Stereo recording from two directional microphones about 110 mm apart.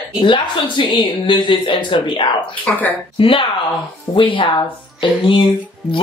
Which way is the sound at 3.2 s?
50° left (ahead or behind).